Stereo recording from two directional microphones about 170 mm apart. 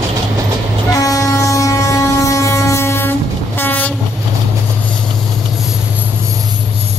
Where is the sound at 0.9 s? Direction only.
20° left (ahead or behind).